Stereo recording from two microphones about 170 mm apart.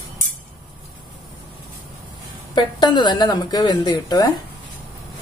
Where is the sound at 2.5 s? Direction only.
25° left (ahead or behind).